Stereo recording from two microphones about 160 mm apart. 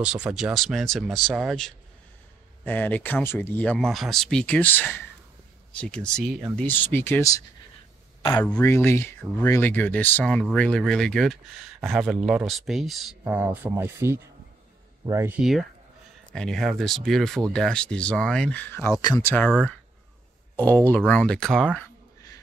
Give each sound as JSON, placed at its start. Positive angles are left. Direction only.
{"t": 0.0, "sound": "speech", "side_deg": -5}
{"t": 2.6, "sound": "speech", "side_deg": 10}
{"t": 16.3, "sound": "speech", "side_deg": 0}
{"t": 20.5, "sound": "speech", "side_deg": 10}